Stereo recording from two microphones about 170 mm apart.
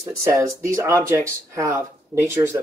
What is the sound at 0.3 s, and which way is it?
Speech, 20° right (ahead or behind).